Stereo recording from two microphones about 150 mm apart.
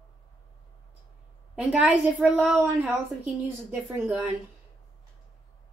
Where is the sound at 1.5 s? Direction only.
10° right (ahead or behind).